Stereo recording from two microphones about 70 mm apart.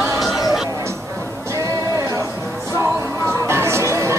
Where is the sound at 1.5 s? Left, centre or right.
Right.